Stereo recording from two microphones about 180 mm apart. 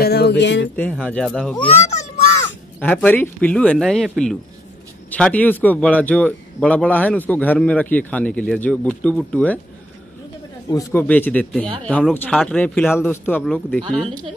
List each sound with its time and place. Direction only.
0.0 s music: 65° left (ahead or behind)
0.7 s speech: 5° left (ahead or behind)
1.6 s a child's voice: 35° left (ahead or behind)
2.8 s a man's voice: 10° left (ahead or behind)
5.1 s a man's voice: 10° left (ahead or behind)
10.7 s a man's voice: 15° left (ahead or behind)